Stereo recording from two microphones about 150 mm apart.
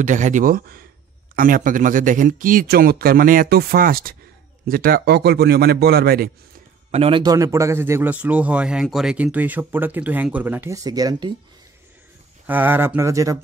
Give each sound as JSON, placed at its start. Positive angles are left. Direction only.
{"t": 0.0, "sound": "a man's voice", "side_deg": -55}
{"t": 6.9, "sound": "a man's voice", "side_deg": -40}
{"t": 7.3, "sound": "speech", "side_deg": -20}
{"t": 12.4, "sound": "speech", "side_deg": -10}